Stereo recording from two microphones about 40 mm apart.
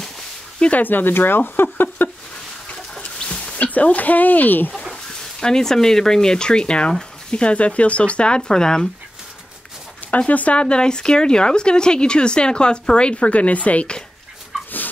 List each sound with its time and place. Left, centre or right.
0.8 s speech: left
3.0 s a sound: left
3.5 s speech: left
5.4 s speech: centre
10.1 s speech: left
14.5 s dog: centre